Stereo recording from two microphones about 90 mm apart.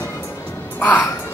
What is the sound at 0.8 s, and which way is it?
Music, 20° left (ahead or behind).